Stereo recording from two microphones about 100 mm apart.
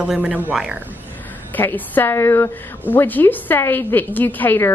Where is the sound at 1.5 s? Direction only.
20° left (ahead or behind).